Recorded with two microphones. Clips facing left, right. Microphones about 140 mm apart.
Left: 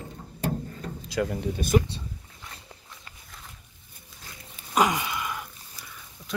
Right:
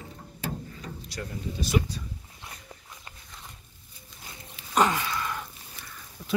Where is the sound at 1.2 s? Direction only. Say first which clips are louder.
Left 6 dB; 60° left (ahead or behind).